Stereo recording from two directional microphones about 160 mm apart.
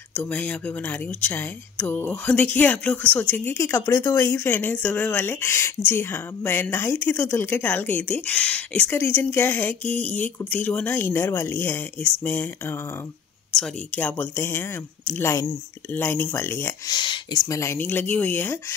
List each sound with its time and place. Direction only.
0.1 s speech: 10° left (ahead or behind)